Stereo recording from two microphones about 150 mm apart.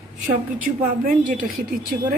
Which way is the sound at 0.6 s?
65° right (ahead or behind).